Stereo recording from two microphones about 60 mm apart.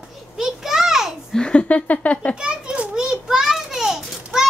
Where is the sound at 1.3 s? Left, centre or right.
Centre.